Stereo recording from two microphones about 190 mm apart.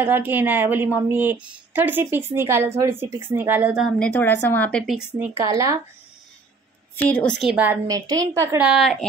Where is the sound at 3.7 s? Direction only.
Centre (ahead or behind).